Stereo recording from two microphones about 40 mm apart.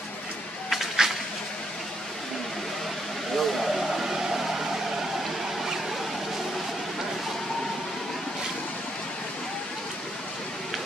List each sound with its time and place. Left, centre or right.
1.0 s vehicle: centre
3.3 s vehicle: centre